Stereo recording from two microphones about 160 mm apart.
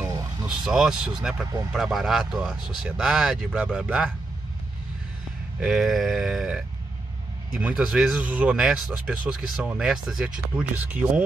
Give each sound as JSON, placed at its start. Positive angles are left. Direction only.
{"t": 0.0, "sound": "vehicle", "side_deg": -25}
{"t": 0.5, "sound": "speech", "side_deg": -5}
{"t": 5.6, "sound": "speech", "side_deg": -5}